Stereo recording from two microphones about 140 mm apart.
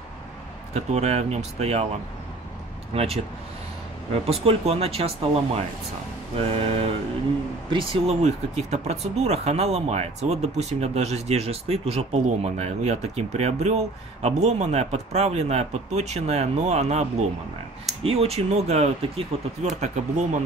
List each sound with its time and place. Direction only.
0.7 s speech: 50° right (ahead or behind)
2.9 s speech: 45° right (ahead or behind)